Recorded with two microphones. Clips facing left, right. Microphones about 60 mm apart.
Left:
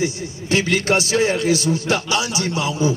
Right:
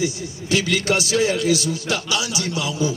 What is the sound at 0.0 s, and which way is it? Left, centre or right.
A man's voice, left.